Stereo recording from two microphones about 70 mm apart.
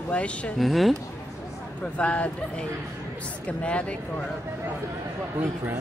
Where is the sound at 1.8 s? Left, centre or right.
Centre.